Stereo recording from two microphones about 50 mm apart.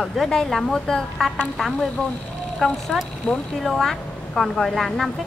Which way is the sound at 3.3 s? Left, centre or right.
Left.